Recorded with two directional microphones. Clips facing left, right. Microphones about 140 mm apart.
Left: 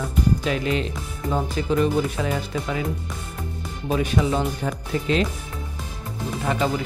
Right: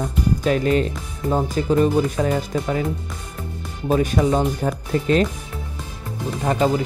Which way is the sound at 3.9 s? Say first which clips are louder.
Right 4 dB; 40° right (ahead or behind).